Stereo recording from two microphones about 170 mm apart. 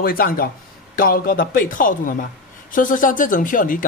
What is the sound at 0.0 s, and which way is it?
Speech, 60° left (ahead or behind).